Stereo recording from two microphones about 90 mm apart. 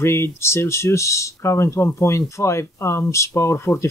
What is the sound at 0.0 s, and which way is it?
Speech, 30° left (ahead or behind).